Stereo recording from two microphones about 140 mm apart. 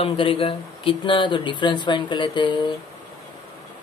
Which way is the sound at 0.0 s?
40° left (ahead or behind).